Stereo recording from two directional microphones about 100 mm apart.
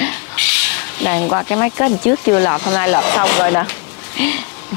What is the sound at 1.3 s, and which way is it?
Speech, 25° left (ahead or behind).